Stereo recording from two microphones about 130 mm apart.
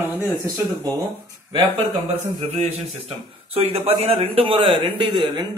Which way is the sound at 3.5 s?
50° right (ahead or behind).